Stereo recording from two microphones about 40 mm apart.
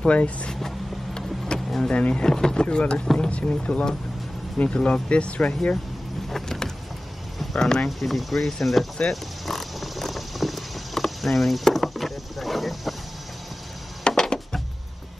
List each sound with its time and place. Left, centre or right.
0.0 s speech: left
0.6 s vehicle: centre
1.9 s speech: left
2.2 s speech: centre; by 3.8 s left
4.6 s speech: centre
6.2 s vehicle: centre
7.5 s speech: centre
8.0 s speech: centre
9.1 s a sound: centre
14.0 s music: centre